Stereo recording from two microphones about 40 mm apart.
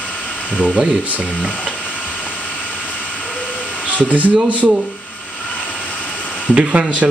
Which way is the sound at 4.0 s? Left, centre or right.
Right.